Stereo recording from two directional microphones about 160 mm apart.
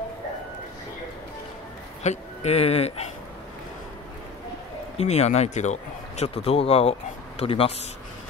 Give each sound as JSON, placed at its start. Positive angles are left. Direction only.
{"t": 2.0, "sound": "speech", "side_deg": 40}
{"t": 4.9, "sound": "speech", "side_deg": 40}